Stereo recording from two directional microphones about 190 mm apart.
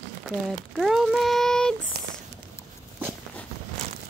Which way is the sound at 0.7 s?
Centre (ahead or behind).